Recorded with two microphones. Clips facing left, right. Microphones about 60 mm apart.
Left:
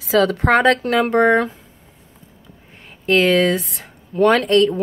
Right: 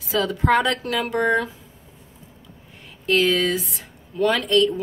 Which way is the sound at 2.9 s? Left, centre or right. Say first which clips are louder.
Left 4 dB; left.